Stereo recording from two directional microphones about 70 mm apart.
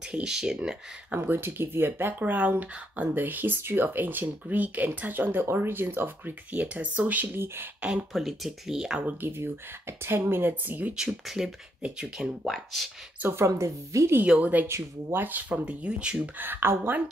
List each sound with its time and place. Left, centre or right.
0.0 s speech: centre
1.1 s speech: right
7.3 s speech: right
8.1 s speech: centre
9.0 s speech: right
11.0 s speech: centre
12.5 s speech: centre
13.5 s speech: right
14.2 s speech: centre
14.7 s speech: right; by 16.3 s centre
16.3 s speech: right